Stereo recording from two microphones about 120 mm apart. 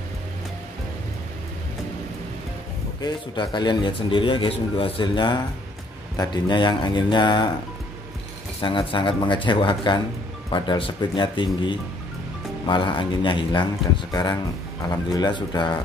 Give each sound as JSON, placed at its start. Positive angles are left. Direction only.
{"t": 3.0, "sound": "a man's voice", "side_deg": 35}
{"t": 8.5, "sound": "a man's voice", "side_deg": 45}